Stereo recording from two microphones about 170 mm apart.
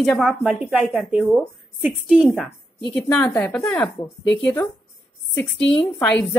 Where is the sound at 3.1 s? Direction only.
10° left (ahead or behind).